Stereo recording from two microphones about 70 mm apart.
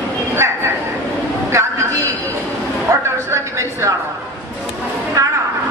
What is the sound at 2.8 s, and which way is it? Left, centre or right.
Speech, right.